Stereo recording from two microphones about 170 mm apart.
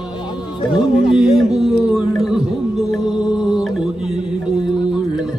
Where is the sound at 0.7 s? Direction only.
30° left (ahead or behind).